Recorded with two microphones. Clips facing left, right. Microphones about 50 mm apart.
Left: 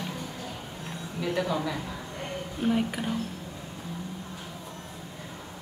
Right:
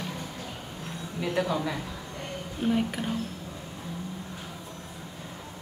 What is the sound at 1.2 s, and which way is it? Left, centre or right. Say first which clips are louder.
A woman's voice: right 1 dB; centre.